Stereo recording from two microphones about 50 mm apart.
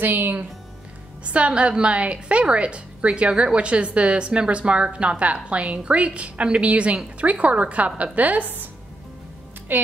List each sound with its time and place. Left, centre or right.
0.0 s speech: right
1.2 s a woman's voice: right
9.7 s speech: right